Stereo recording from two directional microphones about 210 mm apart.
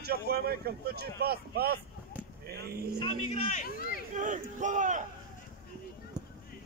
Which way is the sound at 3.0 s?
30° left (ahead or behind).